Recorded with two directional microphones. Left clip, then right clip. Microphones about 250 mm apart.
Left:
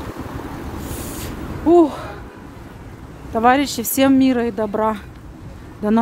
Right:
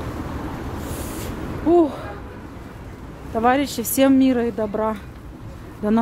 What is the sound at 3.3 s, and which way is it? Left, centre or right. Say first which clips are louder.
Speech: left 4 dB; centre.